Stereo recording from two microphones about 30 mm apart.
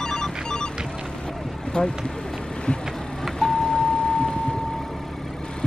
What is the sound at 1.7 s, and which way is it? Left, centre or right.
Speech, left.